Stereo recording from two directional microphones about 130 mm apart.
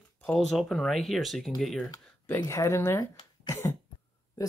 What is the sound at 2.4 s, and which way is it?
Speech, 25° left (ahead or behind).